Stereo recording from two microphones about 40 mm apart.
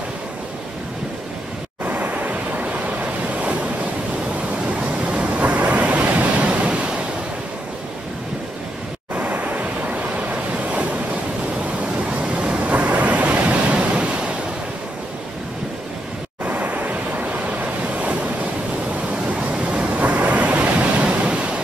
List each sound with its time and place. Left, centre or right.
1.9 s waves: right
5.3 s waves: right
9.1 s vehicle: right
9.8 s waves: right
12.1 s waves: right
16.4 s waves: right